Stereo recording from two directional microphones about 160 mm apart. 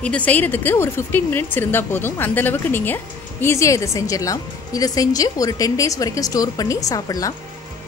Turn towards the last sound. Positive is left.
turn(degrees=20)  # may be behind; listen again after turning